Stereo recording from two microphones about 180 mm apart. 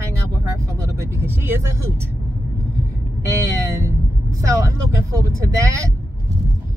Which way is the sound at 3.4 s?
20° right (ahead or behind).